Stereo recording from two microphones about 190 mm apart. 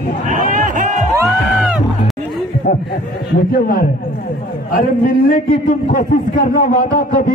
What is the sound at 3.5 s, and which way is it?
Speech, 50° left (ahead or behind).